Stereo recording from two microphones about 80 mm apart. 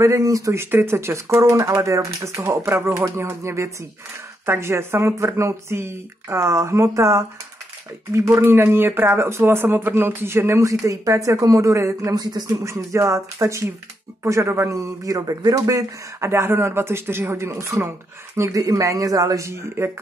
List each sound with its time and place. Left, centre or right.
0.0 s speech: right
0.6 s speech: right
12.6 s speech: right
14.8 s speech: right